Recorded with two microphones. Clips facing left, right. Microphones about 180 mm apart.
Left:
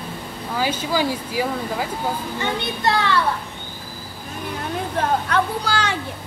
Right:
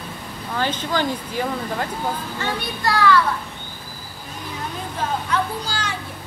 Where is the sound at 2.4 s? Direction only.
20° left (ahead or behind).